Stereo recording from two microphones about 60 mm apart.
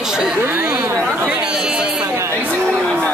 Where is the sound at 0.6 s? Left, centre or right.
Right.